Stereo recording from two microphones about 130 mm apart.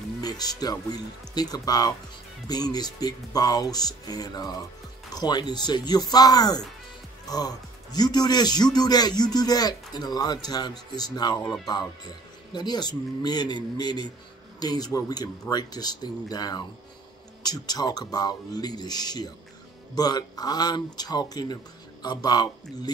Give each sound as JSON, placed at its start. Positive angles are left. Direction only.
{"t": 0.2, "sound": "speech", "side_deg": 30}
{"t": 12.5, "sound": "speech", "side_deg": 35}